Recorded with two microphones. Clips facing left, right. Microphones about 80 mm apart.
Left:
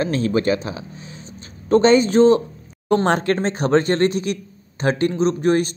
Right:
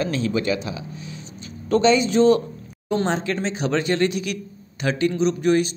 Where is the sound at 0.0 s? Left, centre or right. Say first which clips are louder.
Left 4 dB; left.